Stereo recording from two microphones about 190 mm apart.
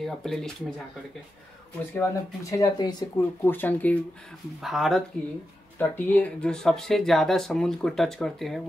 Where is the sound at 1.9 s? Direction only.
15° left (ahead or behind).